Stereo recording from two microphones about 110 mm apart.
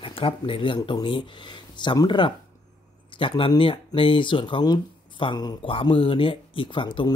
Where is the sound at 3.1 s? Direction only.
50° left (ahead or behind).